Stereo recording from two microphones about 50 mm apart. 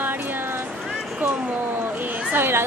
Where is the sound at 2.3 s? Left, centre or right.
Right.